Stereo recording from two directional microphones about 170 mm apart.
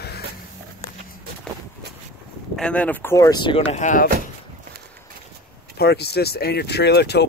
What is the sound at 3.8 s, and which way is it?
Speech, 50° left (ahead or behind).